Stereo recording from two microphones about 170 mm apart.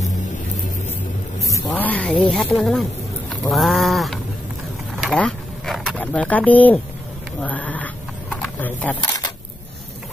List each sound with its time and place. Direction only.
1.7 s speech: 10° left (ahead or behind)
2.2 s sheep: centre (ahead or behind)
5.0 s speech: centre (ahead or behind)
8.3 s a sound: 5° left (ahead or behind)